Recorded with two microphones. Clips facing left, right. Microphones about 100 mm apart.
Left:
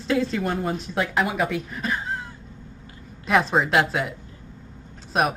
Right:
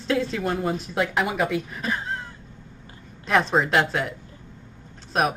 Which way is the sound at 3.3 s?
Centre (ahead or behind).